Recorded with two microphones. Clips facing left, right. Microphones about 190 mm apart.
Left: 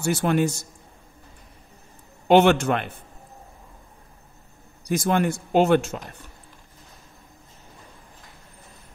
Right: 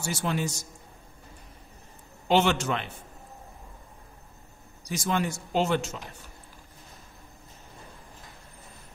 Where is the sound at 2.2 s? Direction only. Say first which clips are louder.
Left 7 dB; 55° left (ahead or behind).